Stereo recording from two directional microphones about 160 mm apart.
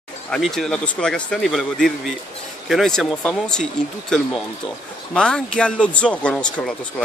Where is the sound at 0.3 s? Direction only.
Centre (ahead or behind).